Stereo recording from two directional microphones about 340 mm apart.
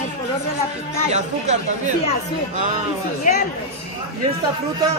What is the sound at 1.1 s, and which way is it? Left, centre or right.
Speech, right.